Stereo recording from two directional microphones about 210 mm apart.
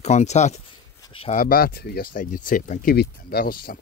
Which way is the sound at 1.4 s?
45° left (ahead or behind).